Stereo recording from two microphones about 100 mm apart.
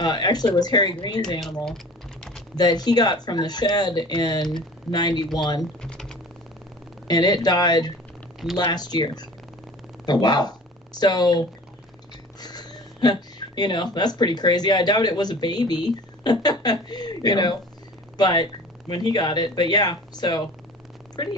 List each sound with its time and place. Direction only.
0.0 s speech: 45° left (ahead or behind)
1.4 s speech: 5° left (ahead or behind)
2.5 s speech: 45° left (ahead or behind)
5.6 s typing: 5° left (ahead or behind)
7.1 s speech: 40° left (ahead or behind)